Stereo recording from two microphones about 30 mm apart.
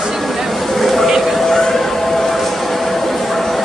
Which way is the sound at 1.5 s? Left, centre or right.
Centre.